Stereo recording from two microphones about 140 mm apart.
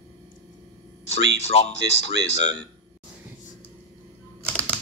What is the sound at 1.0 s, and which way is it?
Speech, 50° left (ahead or behind).